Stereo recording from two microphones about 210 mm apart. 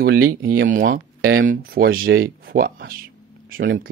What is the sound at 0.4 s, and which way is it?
Speech, 45° right (ahead or behind).